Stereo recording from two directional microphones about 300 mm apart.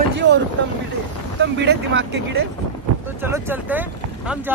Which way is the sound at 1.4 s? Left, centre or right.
Right.